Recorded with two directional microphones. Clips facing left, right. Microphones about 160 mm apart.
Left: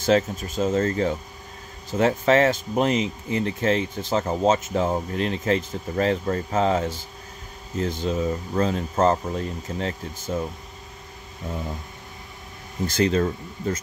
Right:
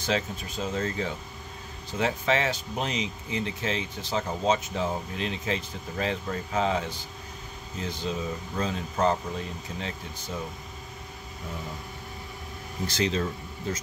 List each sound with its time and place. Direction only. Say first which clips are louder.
0.0 s speech: left 9 dB; 45° left (ahead or behind)
12.8 s speech: left 6 dB; 50° left (ahead or behind)